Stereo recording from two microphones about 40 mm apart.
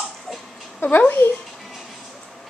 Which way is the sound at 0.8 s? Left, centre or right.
Left.